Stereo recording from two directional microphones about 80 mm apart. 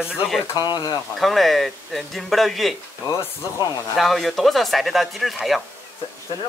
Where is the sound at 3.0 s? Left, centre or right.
Left.